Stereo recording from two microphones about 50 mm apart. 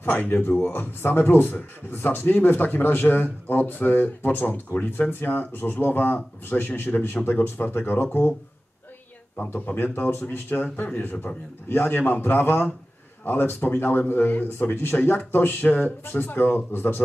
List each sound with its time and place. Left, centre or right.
0.0 s speech: left
9.5 s speech: left
15.1 s speech: left